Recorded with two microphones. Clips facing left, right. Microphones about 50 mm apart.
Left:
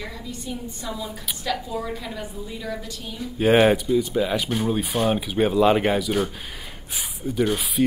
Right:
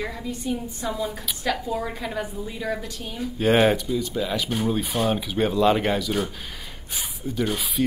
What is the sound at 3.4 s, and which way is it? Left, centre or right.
Speech, centre.